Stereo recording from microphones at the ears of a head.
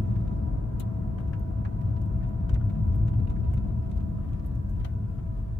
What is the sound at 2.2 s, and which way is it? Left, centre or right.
Vehicle, left.